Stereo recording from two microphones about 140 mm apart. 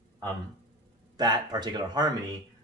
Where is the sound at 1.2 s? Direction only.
30° right (ahead or behind).